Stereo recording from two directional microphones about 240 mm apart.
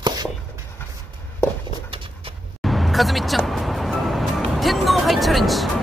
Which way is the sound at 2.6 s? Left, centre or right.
Centre.